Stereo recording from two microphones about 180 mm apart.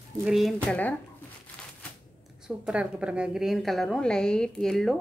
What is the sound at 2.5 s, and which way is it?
A woman's voice, 5° right (ahead or behind).